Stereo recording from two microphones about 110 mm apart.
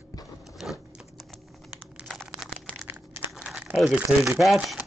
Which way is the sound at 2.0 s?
Centre (ahead or behind).